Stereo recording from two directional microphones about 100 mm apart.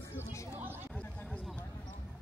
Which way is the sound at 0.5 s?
20° right (ahead or behind).